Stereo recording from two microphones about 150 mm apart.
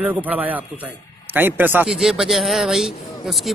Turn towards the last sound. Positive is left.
turn(degrees=0)  # may be behind; listen again after turning